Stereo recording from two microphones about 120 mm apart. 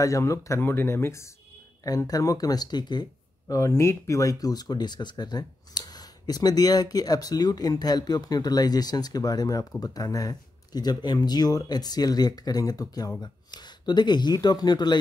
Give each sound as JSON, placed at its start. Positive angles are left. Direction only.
{"t": 0.0, "sound": "speech", "side_deg": 25}